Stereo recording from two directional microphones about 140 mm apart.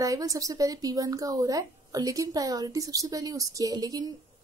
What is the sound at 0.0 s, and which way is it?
A woman's voice, 25° right (ahead or behind).